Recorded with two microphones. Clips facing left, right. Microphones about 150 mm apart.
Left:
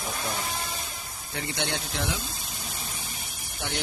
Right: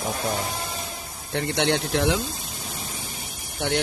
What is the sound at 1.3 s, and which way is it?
Speech, 65° right (ahead or behind).